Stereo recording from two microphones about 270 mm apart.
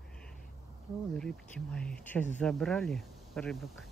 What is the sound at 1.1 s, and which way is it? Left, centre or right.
Speech, centre.